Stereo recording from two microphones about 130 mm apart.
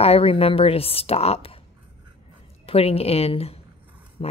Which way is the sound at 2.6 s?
50° left (ahead or behind).